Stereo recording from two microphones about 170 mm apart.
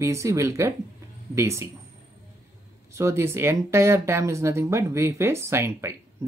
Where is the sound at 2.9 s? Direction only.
15° right (ahead or behind).